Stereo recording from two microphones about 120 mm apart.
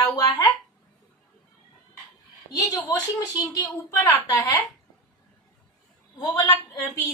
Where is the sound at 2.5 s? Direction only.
30° left (ahead or behind).